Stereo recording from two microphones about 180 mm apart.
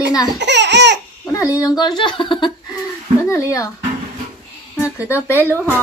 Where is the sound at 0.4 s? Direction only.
75° right (ahead or behind).